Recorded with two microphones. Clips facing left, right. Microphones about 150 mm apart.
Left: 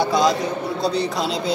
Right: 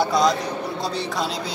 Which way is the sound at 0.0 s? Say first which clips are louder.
Left 1 dB; centre (ahead or behind).